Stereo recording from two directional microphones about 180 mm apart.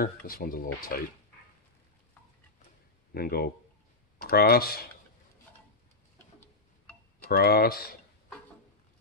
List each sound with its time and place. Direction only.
0.0 s speech: 55° left (ahead or behind)
3.1 s speech: 60° left (ahead or behind)
6.1 s tick-tock: 10° left (ahead or behind)
7.2 s speech: 55° left (ahead or behind)